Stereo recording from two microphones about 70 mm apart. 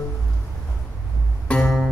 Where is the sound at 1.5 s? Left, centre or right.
Centre.